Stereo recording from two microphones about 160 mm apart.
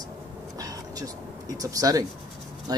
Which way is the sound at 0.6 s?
25° right (ahead or behind).